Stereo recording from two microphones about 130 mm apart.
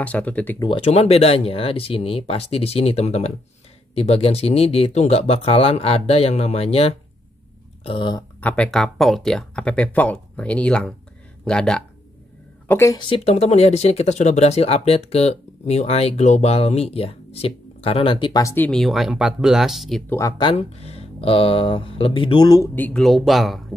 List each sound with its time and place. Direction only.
0.0 s speech: 10° left (ahead or behind)
0.6 s speech: 45° left (ahead or behind)
7.8 s speech: 40° left (ahead or behind)
8.4 s speech: 10° left (ahead or behind)
12.6 s speech: 15° left (ahead or behind)
13.2 s speech: 55° left (ahead or behind); by 18.4 s 40° left (ahead or behind)
18.4 s speech: 20° left (ahead or behind)
18.7 s speech: centre (ahead or behind)
20.1 s speech: 20° left (ahead or behind)
20.5 s speech: 50° left (ahead or behind); by 22.7 s 30° left (ahead or behind)
22.8 s speech: 10° left (ahead or behind)
23.0 s speech: centre (ahead or behind)